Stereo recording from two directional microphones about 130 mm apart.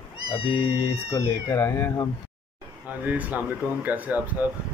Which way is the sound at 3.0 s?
10° right (ahead or behind).